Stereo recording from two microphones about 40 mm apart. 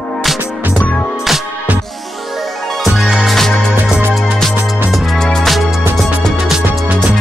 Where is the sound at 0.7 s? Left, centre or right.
Left.